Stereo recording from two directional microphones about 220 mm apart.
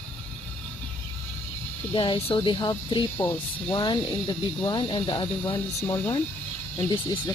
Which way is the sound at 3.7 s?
20° left (ahead or behind).